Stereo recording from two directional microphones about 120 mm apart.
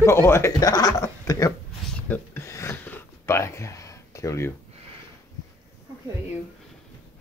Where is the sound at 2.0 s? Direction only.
15° left (ahead or behind).